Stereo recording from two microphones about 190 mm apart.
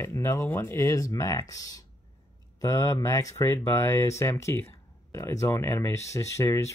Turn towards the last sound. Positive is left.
turn(degrees=15)  # may be behind; listen again after turning